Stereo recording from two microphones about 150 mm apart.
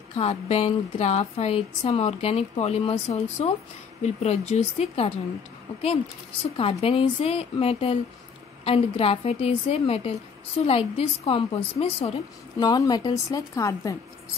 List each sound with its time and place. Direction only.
0.1 s speech: 40° left (ahead or behind)
6.5 s speech: 35° left (ahead or behind)
12.5 s speech: 25° left (ahead or behind)